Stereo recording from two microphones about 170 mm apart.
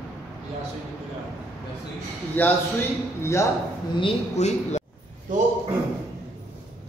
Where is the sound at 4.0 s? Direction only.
40° left (ahead or behind).